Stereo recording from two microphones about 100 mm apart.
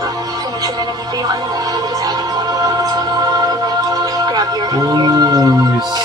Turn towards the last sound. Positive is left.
turn(degrees=-40)  # may be behind; listen again after turning